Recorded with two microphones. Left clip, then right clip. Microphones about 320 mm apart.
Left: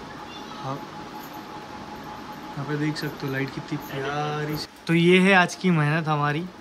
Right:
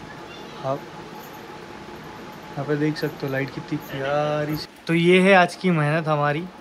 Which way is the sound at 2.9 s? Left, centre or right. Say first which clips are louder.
Right 3 dB; centre.